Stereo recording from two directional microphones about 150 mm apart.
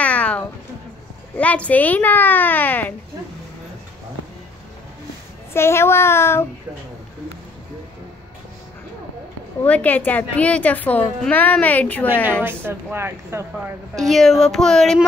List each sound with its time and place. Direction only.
0.0 s a sound: 10° left (ahead or behind)
1.3 s a woman's voice: 10° left (ahead or behind)
5.5 s a woman's voice: 15° left (ahead or behind)
9.6 s a woman's voice: 10° left (ahead or behind)
12.4 s speech: 15° right (ahead or behind)
13.9 s speech: centre (ahead or behind)